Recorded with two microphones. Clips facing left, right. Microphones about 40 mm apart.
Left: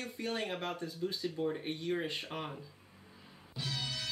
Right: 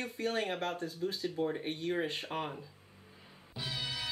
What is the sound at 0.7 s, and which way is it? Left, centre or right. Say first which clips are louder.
Speech: right 1 dB; right.